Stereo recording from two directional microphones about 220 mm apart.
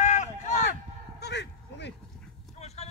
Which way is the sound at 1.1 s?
50° left (ahead or behind).